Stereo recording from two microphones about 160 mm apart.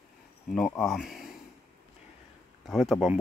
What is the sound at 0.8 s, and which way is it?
Speech, centre (ahead or behind).